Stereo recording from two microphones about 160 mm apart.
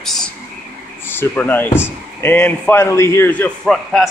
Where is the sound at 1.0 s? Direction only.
15° left (ahead or behind).